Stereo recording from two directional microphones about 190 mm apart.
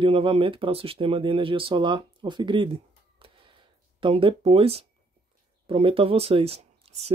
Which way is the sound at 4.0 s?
25° right (ahead or behind).